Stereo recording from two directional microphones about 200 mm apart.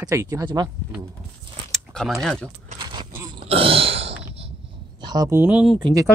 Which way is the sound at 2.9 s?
15° right (ahead or behind).